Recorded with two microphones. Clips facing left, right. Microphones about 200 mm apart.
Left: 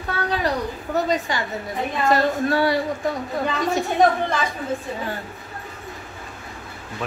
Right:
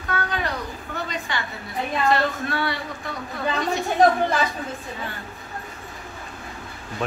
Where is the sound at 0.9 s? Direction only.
40° left (ahead or behind).